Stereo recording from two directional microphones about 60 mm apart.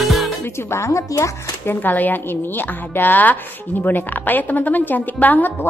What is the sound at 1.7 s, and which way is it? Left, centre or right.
A woman's voice, left.